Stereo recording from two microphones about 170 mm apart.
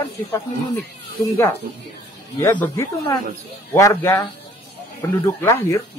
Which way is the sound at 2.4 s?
15° left (ahead or behind).